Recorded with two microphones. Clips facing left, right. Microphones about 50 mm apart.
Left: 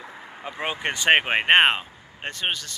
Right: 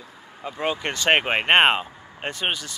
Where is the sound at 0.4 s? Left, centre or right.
Centre.